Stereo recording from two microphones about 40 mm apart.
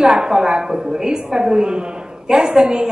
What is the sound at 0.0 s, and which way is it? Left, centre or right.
A woman's voice, centre.